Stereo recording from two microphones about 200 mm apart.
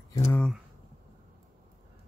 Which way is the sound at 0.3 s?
Centre (ahead or behind).